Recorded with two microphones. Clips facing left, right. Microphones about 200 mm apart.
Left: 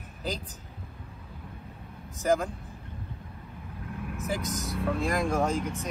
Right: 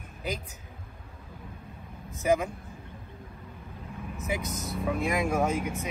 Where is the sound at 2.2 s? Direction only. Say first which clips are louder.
Even; centre (ahead or behind).